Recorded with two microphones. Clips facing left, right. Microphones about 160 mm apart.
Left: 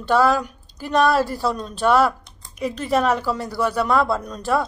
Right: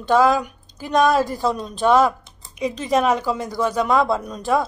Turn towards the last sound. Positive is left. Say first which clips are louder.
# right 1 dB
turn(degrees=-10)  # may be behind; listen again after turning